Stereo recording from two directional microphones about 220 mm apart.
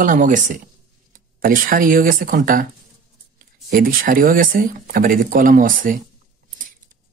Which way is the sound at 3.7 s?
40° right (ahead or behind).